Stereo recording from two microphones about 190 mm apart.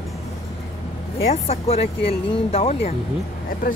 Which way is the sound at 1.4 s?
30° left (ahead or behind).